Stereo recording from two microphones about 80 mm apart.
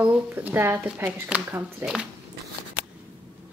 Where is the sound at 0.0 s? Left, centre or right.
Right.